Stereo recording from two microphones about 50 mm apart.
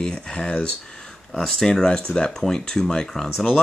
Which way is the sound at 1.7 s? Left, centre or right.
Centre.